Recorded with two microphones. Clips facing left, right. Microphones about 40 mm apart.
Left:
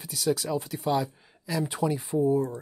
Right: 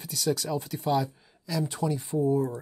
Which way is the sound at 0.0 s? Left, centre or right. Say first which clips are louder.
Left 1 dB; centre.